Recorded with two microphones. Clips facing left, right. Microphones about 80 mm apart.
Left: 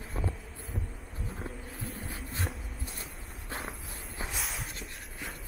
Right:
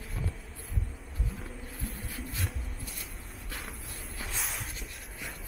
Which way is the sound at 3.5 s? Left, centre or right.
Left.